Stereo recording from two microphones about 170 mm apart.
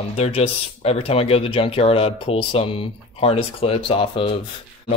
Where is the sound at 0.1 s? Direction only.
35° left (ahead or behind).